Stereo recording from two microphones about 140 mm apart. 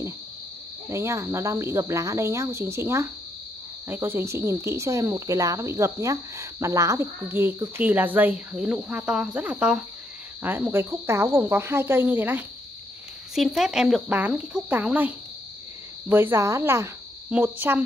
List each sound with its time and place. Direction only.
0.8 s speech: 20° right (ahead or behind)
13.3 s speech: centre (ahead or behind)